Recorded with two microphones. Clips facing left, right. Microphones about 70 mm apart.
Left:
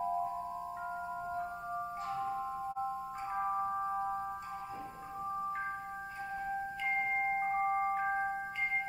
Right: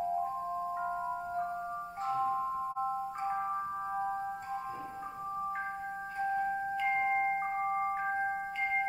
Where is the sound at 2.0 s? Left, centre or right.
Right.